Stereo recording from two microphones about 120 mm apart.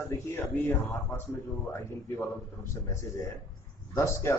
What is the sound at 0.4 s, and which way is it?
Speech, 20° left (ahead or behind).